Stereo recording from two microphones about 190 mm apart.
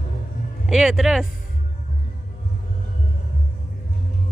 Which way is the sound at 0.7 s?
Centre (ahead or behind).